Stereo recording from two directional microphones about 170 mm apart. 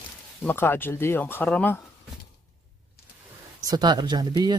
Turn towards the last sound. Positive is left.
turn(degrees=-25)  # may be behind; listen again after turning